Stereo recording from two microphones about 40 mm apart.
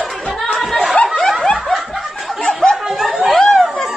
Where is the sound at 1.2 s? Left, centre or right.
Centre.